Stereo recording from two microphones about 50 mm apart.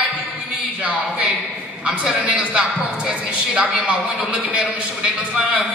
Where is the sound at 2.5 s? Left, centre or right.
Centre.